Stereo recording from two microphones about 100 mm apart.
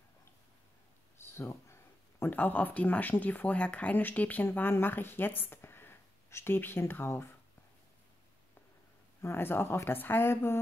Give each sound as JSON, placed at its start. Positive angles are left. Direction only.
{"t": 1.1, "sound": "speech", "side_deg": 25}
{"t": 9.2, "sound": "speech", "side_deg": 25}